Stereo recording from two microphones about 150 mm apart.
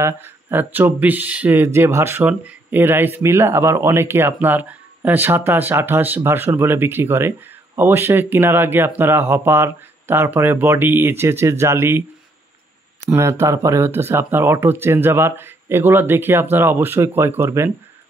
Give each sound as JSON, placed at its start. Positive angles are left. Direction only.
{"t": 0.0, "sound": "speech", "side_deg": -15}
{"t": 13.1, "sound": "speech", "side_deg": -20}